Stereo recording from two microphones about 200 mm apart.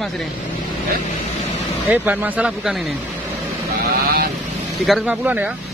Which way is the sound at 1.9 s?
10° right (ahead or behind).